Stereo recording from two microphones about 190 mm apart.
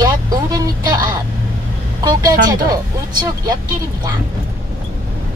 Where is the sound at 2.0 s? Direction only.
20° right (ahead or behind).